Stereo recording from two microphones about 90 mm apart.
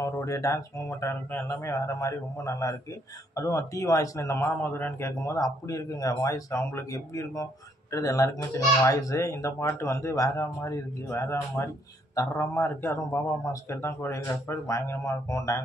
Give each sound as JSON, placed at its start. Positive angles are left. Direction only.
{"t": 0.0, "sound": "a child's voice", "side_deg": 35}
{"t": 4.5, "sound": "a man's voice", "side_deg": 20}
{"t": 5.2, "sound": "a child's voice", "side_deg": 40}